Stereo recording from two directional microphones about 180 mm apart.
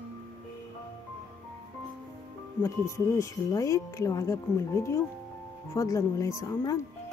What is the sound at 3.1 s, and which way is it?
Speech, 15° left (ahead or behind).